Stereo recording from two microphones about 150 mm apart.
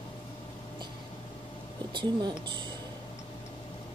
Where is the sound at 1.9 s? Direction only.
30° right (ahead or behind).